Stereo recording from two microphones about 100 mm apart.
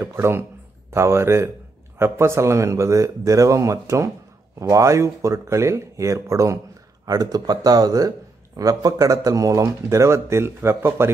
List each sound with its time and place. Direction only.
0.0 s speech: 25° right (ahead or behind)